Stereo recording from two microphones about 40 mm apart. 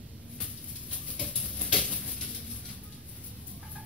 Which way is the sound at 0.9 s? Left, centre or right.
Left.